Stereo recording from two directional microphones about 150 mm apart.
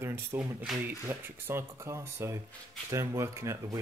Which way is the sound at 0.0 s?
15° right (ahead or behind).